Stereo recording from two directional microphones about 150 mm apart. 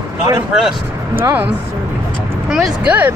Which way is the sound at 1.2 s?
15° right (ahead or behind).